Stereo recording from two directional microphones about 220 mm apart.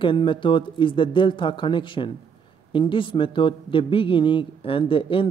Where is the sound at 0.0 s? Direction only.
20° left (ahead or behind).